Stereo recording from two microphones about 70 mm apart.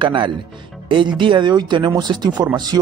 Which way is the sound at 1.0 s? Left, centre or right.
Right.